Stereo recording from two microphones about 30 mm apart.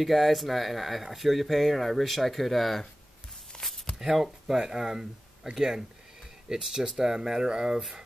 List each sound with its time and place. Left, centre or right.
0.0 s speech: centre
3.5 s a sound: left
4.0 s speech: centre
4.7 s speech: right